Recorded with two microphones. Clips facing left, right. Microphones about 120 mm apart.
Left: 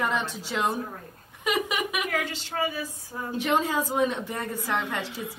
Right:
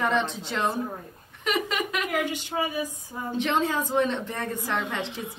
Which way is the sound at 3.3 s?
5° left (ahead or behind).